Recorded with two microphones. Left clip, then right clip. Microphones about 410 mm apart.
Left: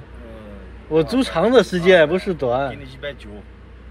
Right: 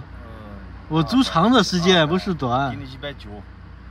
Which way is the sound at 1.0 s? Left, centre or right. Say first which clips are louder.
Right 4 dB; centre.